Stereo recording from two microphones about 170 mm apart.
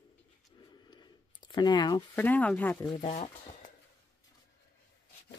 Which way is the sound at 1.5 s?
25° left (ahead or behind).